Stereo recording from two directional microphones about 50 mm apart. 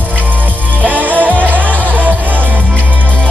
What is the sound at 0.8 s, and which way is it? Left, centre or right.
Music, right.